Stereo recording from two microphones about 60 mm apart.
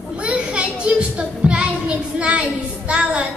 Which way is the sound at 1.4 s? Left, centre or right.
Centre.